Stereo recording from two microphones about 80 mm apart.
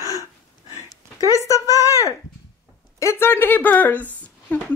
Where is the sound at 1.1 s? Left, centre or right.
Left.